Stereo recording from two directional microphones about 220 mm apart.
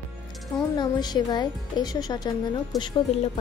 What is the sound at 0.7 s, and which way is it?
A woman's voice, 20° left (ahead or behind).